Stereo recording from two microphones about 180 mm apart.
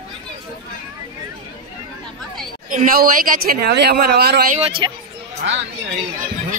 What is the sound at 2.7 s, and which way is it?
Speech, 50° right (ahead or behind).